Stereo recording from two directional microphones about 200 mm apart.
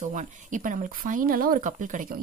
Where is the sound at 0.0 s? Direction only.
40° right (ahead or behind).